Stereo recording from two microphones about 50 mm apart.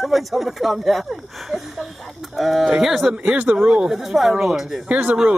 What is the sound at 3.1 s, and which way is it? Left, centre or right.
Speech, centre.